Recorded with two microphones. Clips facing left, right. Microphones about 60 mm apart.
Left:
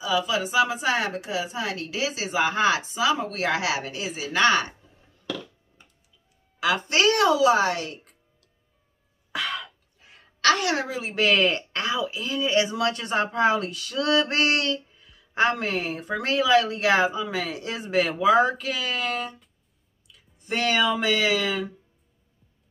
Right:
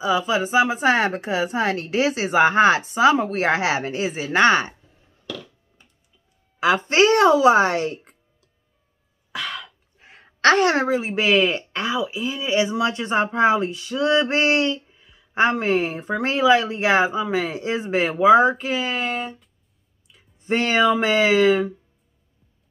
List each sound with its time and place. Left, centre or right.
0.0 s a woman's voice: right
6.6 s speech: right
9.3 s cough: centre
9.9 s a sound: right
11.1 s speech: centre; by 21.6 s right